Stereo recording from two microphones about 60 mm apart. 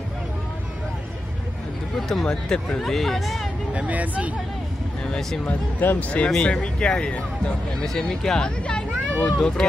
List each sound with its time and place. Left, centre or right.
2.0 s speech: centre
2.2 s speech: centre
2.8 s speech: centre
3.7 s speech: right
5.4 s speech: left
6.3 s speech: centre
7.8 s speech: centre